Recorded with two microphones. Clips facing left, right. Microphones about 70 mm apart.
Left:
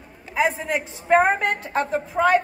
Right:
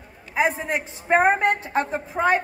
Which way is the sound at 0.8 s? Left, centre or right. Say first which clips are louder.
Left 2 dB; centre.